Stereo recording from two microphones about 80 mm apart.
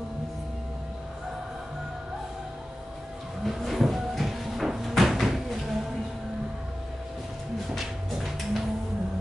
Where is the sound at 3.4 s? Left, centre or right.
Centre.